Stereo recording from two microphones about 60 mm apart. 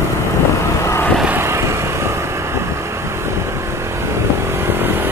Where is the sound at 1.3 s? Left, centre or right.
Right.